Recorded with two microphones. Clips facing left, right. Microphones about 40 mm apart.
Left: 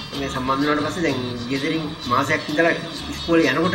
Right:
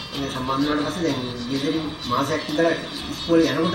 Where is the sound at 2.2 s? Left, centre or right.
Left.